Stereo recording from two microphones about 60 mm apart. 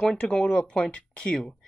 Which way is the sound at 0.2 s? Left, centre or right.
Centre.